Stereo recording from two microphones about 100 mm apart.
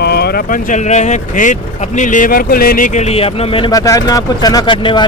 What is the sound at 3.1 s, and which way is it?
Speech, 80° left.